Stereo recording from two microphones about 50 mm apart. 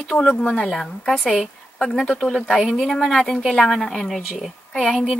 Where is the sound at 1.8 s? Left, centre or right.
Left.